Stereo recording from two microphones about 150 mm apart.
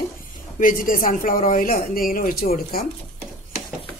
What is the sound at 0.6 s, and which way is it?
A man's voice, 65° left (ahead or behind).